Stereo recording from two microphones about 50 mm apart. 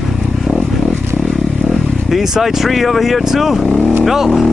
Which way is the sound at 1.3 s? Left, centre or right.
Centre.